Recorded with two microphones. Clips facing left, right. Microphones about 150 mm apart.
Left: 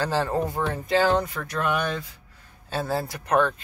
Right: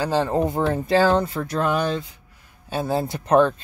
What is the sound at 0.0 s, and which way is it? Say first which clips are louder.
Speech: right 4 dB; 15° right (ahead or behind).